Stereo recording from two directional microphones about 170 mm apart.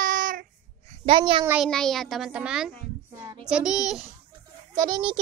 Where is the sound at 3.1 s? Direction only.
15° right (ahead or behind).